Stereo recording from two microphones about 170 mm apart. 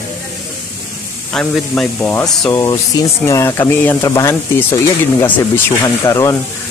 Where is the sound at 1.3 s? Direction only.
5° left (ahead or behind).